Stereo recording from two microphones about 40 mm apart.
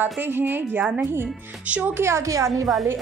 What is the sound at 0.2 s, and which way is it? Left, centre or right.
Speech, right.